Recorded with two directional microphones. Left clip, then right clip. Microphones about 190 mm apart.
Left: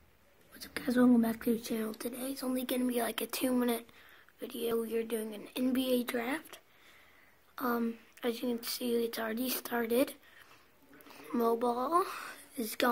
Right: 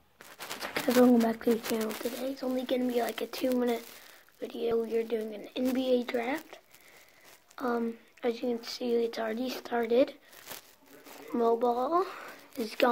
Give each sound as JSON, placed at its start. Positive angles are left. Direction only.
{"t": 0.6, "sound": "speech", "side_deg": 15}
{"t": 2.2, "sound": "speech", "side_deg": 30}
{"t": 4.4, "sound": "speech", "side_deg": 25}
{"t": 11.2, "sound": "a woman's voice", "side_deg": 25}